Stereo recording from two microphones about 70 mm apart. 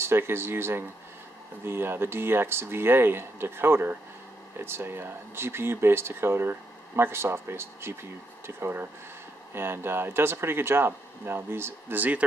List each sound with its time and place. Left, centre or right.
0.0 s speech: right
12.0 s speech: right